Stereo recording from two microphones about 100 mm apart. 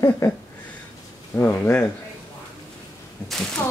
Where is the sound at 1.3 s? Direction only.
20° left (ahead or behind).